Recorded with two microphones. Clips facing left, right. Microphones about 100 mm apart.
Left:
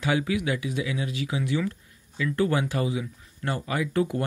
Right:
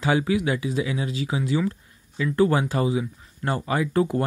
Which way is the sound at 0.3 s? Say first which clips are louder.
Right 4 dB; 30° right (ahead or behind).